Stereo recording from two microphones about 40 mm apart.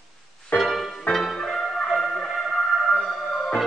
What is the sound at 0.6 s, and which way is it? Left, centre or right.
Music, centre.